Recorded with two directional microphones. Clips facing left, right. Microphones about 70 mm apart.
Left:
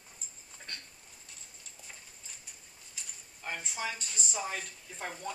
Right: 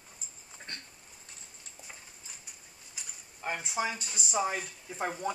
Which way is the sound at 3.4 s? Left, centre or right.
Centre.